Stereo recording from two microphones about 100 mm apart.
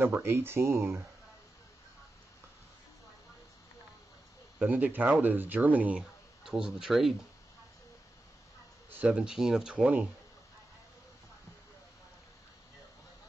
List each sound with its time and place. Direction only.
0.0 s speech: 20° right (ahead or behind)
4.6 s speech: 15° right (ahead or behind)
6.4 s speech: 5° right (ahead or behind)
8.9 s speech: 15° right (ahead or behind)